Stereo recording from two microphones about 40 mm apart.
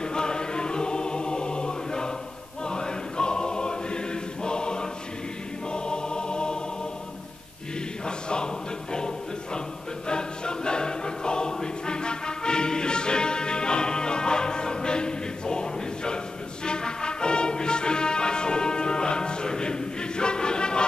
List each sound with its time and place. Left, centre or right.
0.0 s choir: centre
8.0 s choir: left
8.9 s music: centre
10.0 s choir: left
16.6 s music: left